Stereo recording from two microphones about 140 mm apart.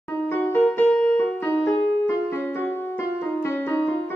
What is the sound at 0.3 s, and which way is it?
Music, 15° left (ahead or behind).